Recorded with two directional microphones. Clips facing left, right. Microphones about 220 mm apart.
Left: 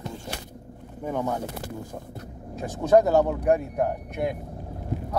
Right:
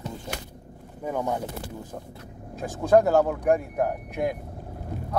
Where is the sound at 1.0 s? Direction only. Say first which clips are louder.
Even; 5° right (ahead or behind).